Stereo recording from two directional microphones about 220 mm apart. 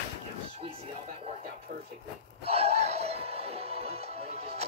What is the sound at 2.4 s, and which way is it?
Music, 30° right (ahead or behind).